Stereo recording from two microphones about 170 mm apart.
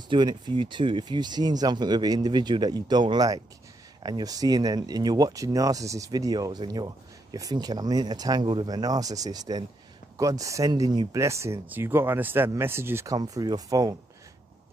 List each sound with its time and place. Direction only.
0.1 s speech: 25° right (ahead or behind)